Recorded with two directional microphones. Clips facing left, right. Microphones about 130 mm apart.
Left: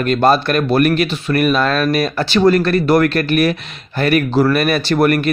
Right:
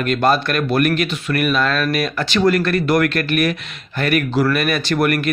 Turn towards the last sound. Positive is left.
turn(degrees=35)  # may be behind; listen again after turning